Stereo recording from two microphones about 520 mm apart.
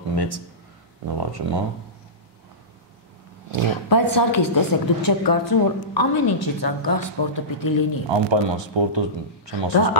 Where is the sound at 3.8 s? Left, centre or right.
Left.